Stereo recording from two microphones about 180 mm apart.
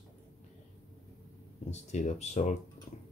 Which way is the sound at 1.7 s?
40° left (ahead or behind).